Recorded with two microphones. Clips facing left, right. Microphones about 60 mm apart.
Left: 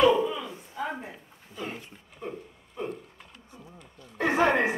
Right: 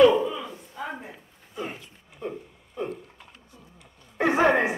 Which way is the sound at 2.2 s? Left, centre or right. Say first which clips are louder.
Right 3 dB; centre.